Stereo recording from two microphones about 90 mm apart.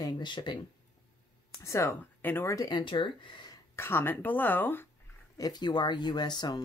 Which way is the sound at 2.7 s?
60° left (ahead or behind).